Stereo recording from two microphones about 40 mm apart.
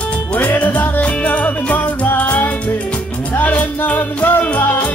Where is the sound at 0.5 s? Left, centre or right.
Left.